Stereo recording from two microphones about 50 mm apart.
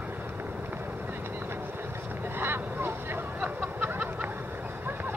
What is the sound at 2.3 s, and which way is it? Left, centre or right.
Vehicle, right.